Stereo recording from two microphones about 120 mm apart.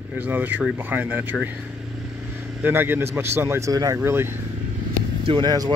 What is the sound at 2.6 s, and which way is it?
Speech, 15° right (ahead or behind).